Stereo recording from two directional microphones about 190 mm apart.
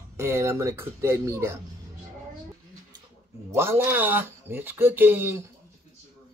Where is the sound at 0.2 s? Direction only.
15° right (ahead or behind).